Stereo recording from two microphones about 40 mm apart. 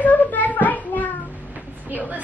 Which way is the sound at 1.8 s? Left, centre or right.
Right.